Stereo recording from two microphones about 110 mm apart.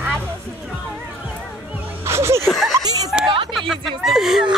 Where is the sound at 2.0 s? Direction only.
25° right (ahead or behind).